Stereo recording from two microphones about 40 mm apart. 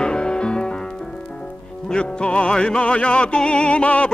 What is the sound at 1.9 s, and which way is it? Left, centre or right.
Music, left.